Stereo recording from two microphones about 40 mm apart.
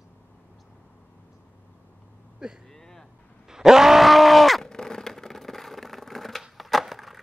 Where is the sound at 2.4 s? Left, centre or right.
Centre.